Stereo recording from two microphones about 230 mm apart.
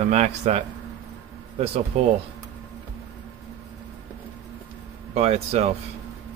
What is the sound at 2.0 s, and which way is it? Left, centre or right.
Speech, right.